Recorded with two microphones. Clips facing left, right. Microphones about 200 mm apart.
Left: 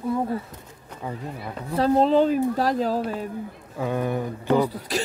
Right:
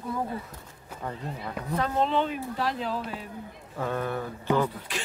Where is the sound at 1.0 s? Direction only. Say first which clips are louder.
Left 3 dB; 10° left (ahead or behind).